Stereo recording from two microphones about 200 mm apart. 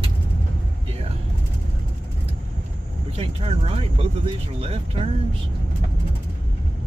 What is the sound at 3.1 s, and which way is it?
Speech, 30° right (ahead or behind).